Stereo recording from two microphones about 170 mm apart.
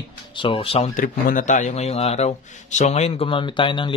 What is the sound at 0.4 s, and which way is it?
Speech, 30° left (ahead or behind).